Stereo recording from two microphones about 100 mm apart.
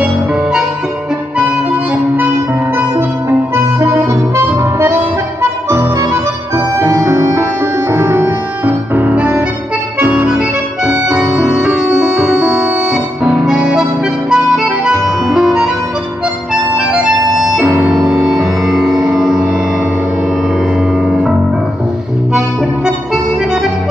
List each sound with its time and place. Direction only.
0.0 s music: 5° right (ahead or behind)
14.3 s harmonica: 5° right (ahead or behind)
16.7 s music: 5° right (ahead or behind)
21.1 s music: 5° right (ahead or behind)